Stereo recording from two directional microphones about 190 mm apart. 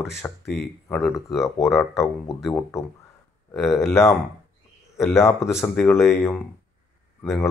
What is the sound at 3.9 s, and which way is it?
Speech, 15° left (ahead or behind).